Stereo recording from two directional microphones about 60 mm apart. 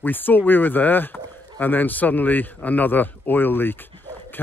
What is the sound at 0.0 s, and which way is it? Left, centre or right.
Speech, left.